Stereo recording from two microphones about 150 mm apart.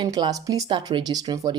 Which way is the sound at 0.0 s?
30° right (ahead or behind).